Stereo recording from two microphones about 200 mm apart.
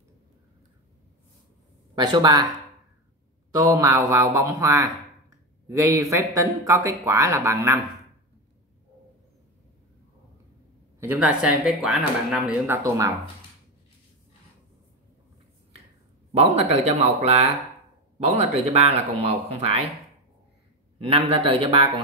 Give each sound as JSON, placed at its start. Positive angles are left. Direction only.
{"t": 2.0, "sound": "a man's voice", "side_deg": -20}
{"t": 3.5, "sound": "speech", "side_deg": -15}
{"t": 11.0, "sound": "speech", "side_deg": -10}
{"t": 16.3, "sound": "speech", "side_deg": -30}
{"t": 18.7, "sound": "a man's voice", "side_deg": -30}
{"t": 21.0, "sound": "a man's voice", "side_deg": -30}